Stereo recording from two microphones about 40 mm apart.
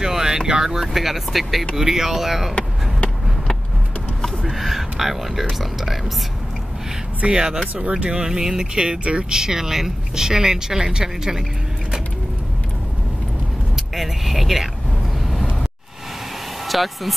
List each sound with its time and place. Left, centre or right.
0.0 s vehicle: centre
0.5 s speech: centre
4.5 s speech: centre
7.3 s speech: centre
13.9 s speech: centre
16.6 s speech: centre